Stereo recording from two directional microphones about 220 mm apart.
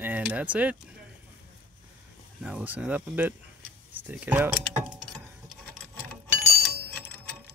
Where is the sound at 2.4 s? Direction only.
5° right (ahead or behind).